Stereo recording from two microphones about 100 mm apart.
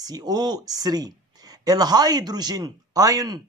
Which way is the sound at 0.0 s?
40° right (ahead or behind).